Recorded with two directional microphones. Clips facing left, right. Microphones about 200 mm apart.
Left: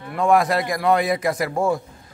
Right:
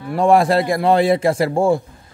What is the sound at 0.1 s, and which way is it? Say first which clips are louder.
A man's voice: right 4 dB; 30° right (ahead or behind).